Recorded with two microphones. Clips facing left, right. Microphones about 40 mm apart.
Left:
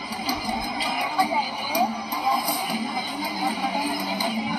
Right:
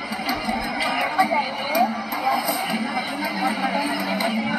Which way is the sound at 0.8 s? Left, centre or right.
Right.